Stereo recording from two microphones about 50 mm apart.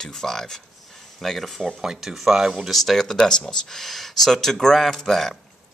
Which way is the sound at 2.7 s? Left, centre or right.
Centre.